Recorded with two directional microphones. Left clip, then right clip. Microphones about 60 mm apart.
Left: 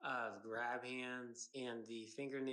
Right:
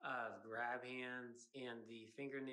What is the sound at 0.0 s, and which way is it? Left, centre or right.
Speech, left.